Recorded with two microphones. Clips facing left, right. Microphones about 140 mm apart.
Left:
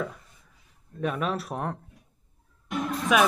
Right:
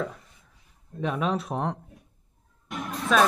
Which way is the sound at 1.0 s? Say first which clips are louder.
Right 1 dB; centre (ahead or behind).